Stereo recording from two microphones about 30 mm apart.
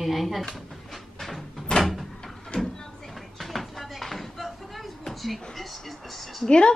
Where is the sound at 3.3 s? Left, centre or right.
Centre.